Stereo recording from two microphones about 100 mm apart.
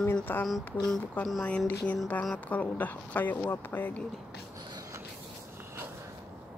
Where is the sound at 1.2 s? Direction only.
5° left (ahead or behind).